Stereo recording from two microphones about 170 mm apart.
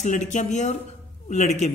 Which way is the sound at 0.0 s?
45° left (ahead or behind).